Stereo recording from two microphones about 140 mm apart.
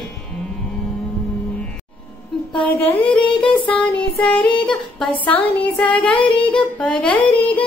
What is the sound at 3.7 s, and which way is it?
A woman's voice, 5° left (ahead or behind).